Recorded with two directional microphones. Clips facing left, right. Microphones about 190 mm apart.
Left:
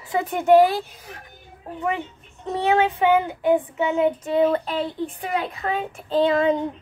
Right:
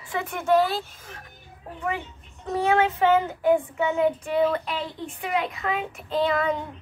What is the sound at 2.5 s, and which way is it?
Child singing, 20° left (ahead or behind).